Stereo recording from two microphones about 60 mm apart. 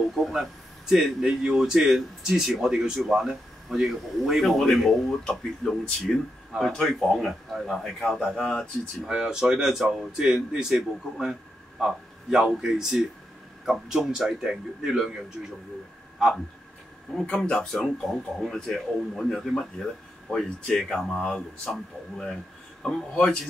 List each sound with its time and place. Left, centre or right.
0.1 s a man's voice: centre
9.0 s speech: centre
17.1 s a man's voice: centre